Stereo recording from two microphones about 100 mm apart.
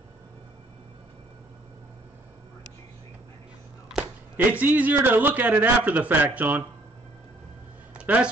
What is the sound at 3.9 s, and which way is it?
Speech, 15° right (ahead or behind).